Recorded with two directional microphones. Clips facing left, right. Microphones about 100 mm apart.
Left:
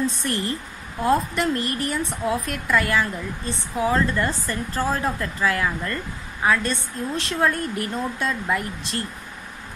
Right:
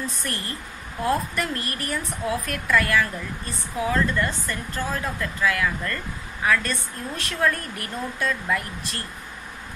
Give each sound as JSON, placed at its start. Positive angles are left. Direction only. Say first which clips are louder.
{"t": 0.0, "sound": "a woman's voice", "louder": "left 7 dB", "side_deg": 30}